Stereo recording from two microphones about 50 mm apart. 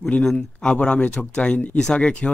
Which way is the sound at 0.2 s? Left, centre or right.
Centre.